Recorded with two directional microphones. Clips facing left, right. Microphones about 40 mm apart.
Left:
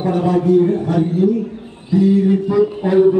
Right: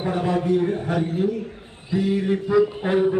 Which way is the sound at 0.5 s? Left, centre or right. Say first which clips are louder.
Left 7 dB; centre.